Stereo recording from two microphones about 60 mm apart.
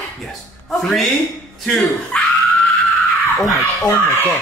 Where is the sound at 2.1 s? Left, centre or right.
Centre.